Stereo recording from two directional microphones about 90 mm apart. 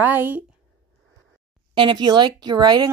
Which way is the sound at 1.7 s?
60° right (ahead or behind).